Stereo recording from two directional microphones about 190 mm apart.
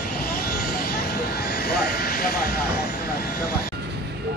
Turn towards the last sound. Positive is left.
turn(degrees=50)  # may be behind; listen again after turning